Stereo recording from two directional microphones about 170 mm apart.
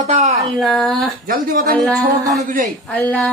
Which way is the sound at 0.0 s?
40° right (ahead or behind).